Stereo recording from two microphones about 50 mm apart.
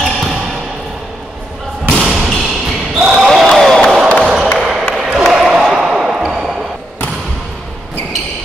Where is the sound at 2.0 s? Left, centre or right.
Centre.